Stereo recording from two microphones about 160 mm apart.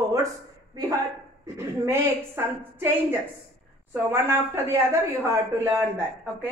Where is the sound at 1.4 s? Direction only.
20° right (ahead or behind).